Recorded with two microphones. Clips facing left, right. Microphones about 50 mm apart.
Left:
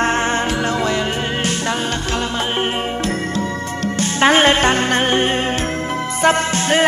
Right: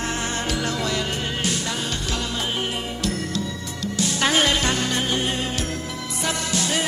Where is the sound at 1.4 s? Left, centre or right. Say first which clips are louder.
Left 6 dB; left.